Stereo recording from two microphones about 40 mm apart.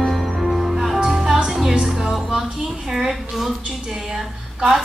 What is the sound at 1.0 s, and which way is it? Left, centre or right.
Music, centre.